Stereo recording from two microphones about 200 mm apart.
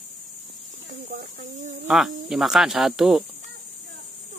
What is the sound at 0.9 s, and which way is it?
Speech, 45° right (ahead or behind).